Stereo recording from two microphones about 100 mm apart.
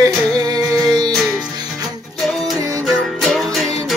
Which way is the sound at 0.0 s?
40° right (ahead or behind).